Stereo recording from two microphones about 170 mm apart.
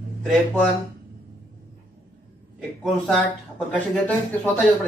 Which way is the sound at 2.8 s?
Centre (ahead or behind).